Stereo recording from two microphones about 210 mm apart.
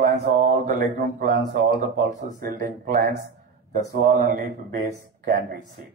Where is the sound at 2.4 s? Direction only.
40° right (ahead or behind).